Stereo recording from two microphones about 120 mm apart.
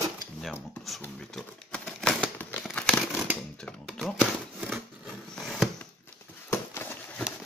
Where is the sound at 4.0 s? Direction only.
10° right (ahead or behind).